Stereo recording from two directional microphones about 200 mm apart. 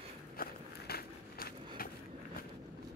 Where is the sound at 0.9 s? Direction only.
50° left (ahead or behind).